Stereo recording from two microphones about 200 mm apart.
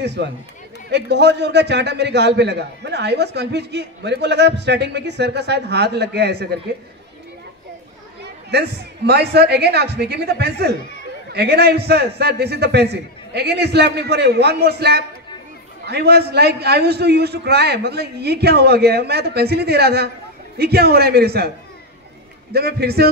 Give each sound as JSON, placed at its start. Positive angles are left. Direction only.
{"t": 0.0, "sound": "a man's voice", "side_deg": -60}
{"t": 8.2, "sound": "a man's voice", "side_deg": -55}
{"t": 22.5, "sound": "a man's voice", "side_deg": -55}